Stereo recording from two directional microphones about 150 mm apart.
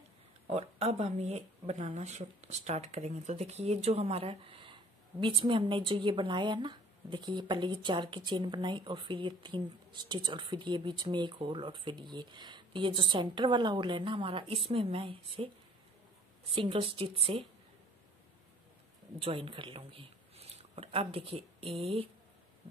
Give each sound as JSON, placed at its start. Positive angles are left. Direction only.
{"t": 0.5, "sound": "speech", "side_deg": -45}
{"t": 16.5, "sound": "speech", "side_deg": -35}
{"t": 19.2, "sound": "speech", "side_deg": -35}